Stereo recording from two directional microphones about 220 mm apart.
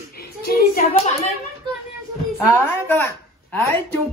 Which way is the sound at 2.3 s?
10° left (ahead or behind).